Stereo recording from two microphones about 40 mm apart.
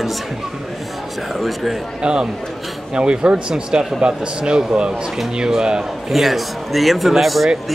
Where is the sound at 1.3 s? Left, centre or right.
Centre.